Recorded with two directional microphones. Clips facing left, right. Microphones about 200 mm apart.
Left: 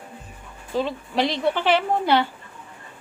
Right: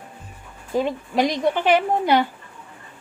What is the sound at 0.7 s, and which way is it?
A woman's voice, 15° right (ahead or behind).